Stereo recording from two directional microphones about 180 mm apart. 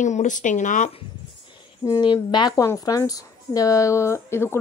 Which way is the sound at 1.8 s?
20° left (ahead or behind).